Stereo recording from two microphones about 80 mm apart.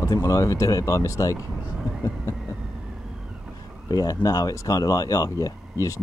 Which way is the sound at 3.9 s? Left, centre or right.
Left.